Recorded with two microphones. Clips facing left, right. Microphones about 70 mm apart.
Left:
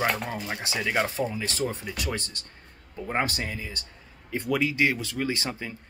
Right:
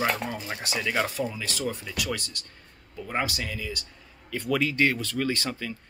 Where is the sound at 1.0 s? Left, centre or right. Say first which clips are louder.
Left 1 dB; left.